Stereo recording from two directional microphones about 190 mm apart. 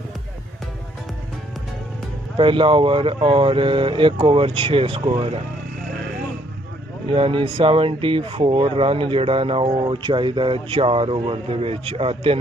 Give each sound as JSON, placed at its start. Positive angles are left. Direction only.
{"t": 2.3, "sound": "speech", "side_deg": -25}
{"t": 7.1, "sound": "speech", "side_deg": -25}